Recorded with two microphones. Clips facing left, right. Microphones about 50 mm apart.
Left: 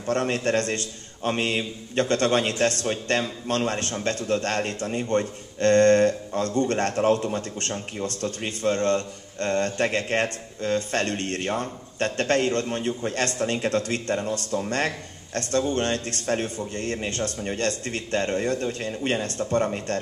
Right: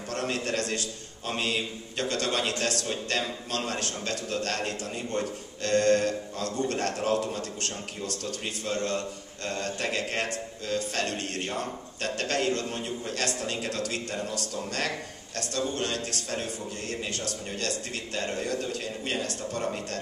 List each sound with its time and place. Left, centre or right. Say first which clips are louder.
0.0 s a man's voice: left 7 dB; left